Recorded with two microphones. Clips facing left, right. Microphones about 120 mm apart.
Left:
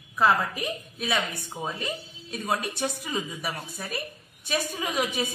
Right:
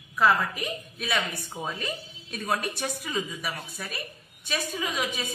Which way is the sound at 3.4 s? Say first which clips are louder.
Left 1 dB; 30° left (ahead or behind).